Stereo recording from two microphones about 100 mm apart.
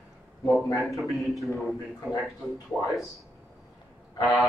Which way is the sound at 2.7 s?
10° right (ahead or behind).